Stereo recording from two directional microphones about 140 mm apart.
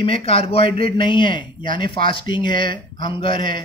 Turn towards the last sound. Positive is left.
turn(degrees=40)  # may be behind; listen again after turning